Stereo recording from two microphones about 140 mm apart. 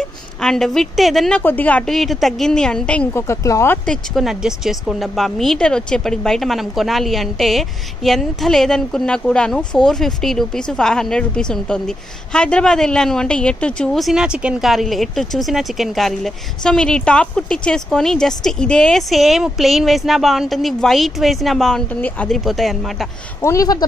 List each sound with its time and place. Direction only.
0.4 s speech: 5° left (ahead or behind)
1.4 s a woman's voice: 10° left (ahead or behind)
3.8 s speech: 5° left (ahead or behind)
23.4 s speech: 25° left (ahead or behind)